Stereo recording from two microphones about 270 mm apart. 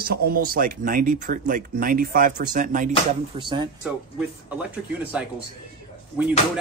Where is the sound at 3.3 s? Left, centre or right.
Centre.